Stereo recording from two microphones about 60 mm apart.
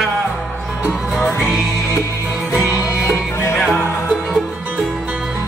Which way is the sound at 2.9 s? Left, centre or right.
Left.